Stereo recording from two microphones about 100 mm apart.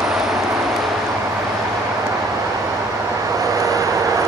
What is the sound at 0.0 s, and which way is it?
Vehicle, 5° right (ahead or behind).